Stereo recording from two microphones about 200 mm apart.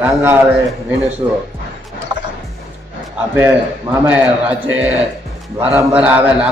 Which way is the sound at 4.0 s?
5° right (ahead or behind).